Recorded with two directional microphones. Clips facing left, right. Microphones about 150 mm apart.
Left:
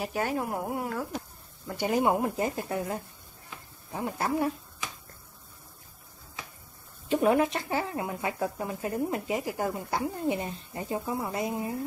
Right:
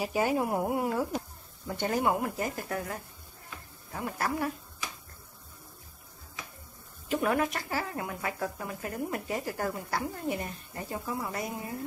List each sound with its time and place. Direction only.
0.0 s speech: 10° right (ahead or behind)
1.8 s speech: 15° left (ahead or behind)
7.1 s speech: 25° left (ahead or behind)